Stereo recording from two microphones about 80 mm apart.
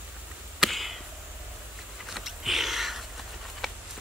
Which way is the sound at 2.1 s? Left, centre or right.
Centre.